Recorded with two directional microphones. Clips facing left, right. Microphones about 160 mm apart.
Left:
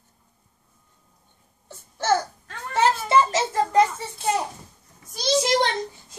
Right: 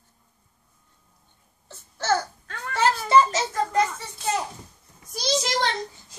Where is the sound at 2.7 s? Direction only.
20° left (ahead or behind).